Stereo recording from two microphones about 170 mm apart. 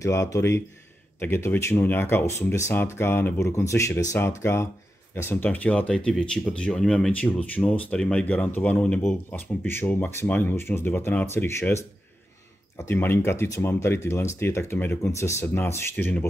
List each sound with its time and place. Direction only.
0.0 s speech: 20° left (ahead or behind)